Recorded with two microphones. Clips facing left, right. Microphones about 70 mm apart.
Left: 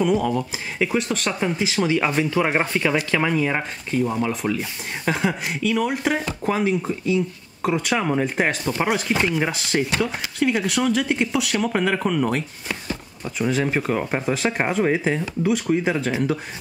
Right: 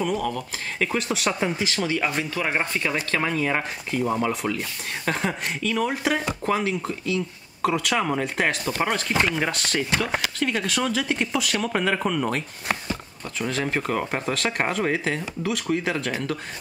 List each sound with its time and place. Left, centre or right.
0.0 s speech: centre
0.8 s speech: centre
1.8 s speech: left
3.5 s speech: centre